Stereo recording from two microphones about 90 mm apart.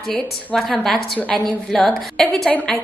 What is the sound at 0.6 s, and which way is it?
A woman's voice, 5° left (ahead or behind).